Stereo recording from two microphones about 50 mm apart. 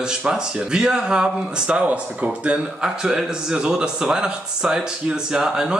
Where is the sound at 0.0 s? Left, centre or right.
Centre.